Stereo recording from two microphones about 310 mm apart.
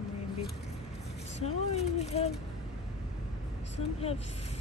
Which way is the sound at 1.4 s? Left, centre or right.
Left.